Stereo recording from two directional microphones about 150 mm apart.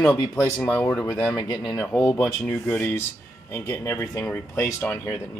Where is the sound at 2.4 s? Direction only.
15° left (ahead or behind).